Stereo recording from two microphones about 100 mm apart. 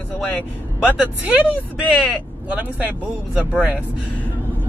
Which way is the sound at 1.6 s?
15° left (ahead or behind).